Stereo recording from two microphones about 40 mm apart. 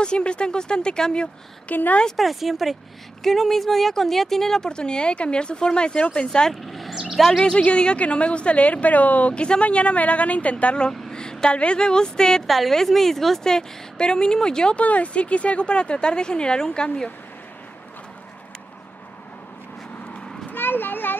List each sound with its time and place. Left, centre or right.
0.0 s speech: left
1.7 s speech: left
2.1 s speech: centre; by 6.5 s left
6.5 s speech: centre
7.3 s a woman's voice: left
9.3 s a woman's voice: left
10.9 s a woman's voice: centre
12.4 s speech: centre
14.8 s speech: left
20.4 s a sound: left